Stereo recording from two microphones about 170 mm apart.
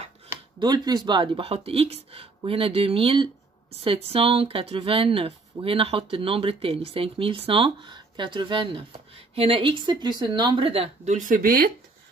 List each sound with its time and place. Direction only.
0.6 s a woman's voice: 25° right (ahead or behind)
11.1 s speech: 50° right (ahead or behind)